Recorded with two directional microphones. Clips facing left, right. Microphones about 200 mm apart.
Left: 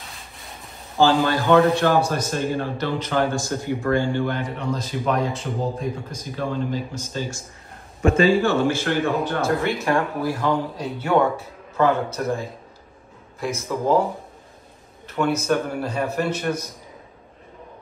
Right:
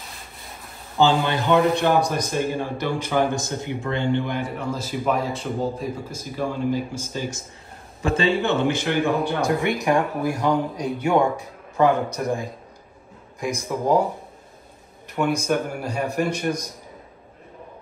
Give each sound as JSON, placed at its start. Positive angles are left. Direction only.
{"t": 1.0, "sound": "speech", "side_deg": -20}
{"t": 3.3, "sound": "a man's voice", "side_deg": -20}
{"t": 4.4, "sound": "speech", "side_deg": -5}
{"t": 15.0, "sound": "speech", "side_deg": -10}